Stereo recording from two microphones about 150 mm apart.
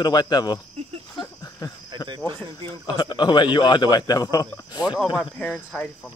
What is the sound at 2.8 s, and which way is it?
Speech, 30° left (ahead or behind).